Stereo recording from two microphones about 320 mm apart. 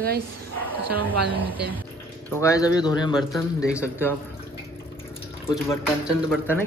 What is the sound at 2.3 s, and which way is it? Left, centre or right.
Speech, centre.